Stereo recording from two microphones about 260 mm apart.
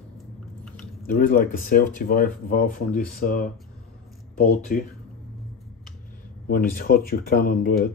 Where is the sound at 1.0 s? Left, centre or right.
Left.